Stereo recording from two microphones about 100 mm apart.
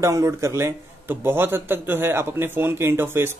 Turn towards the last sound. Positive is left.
turn(degrees=-20)  # may be behind; listen again after turning